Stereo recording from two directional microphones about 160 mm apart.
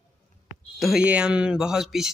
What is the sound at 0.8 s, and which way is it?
Speech, 5° right (ahead or behind).